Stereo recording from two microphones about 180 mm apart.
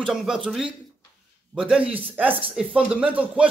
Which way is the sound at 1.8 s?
30° right (ahead or behind).